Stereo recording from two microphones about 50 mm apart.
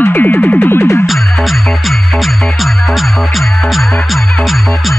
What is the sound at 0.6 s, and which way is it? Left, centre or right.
Music, left.